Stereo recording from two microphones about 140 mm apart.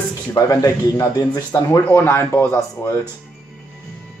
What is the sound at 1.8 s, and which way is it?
Speech, 15° left (ahead or behind).